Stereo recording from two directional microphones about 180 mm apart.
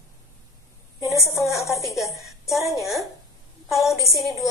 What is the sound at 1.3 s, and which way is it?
A woman's voice, centre (ahead or behind).